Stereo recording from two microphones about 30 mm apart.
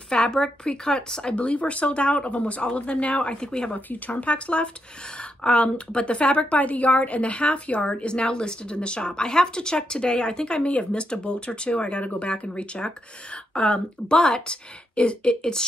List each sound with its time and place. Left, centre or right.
0.1 s speech: left
1.3 s a woman's voice: left
3.3 s speech: left
3.7 s speech: left
5.4 s a woman's voice: left
7.8 s speech: left